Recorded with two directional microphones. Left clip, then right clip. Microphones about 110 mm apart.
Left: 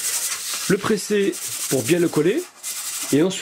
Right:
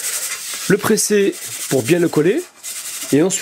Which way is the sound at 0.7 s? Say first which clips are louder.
Right 6 dB; 35° right (ahead or behind).